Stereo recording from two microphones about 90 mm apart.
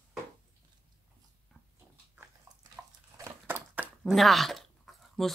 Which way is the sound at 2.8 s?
25° right (ahead or behind).